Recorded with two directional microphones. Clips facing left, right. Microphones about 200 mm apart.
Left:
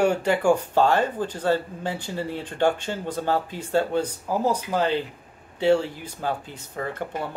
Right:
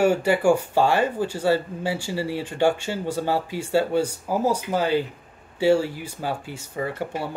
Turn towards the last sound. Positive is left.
turn(degrees=-5)  # may be behind; listen again after turning